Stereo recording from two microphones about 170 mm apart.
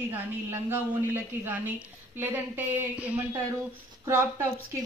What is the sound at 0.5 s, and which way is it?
A woman's voice, 15° right (ahead or behind).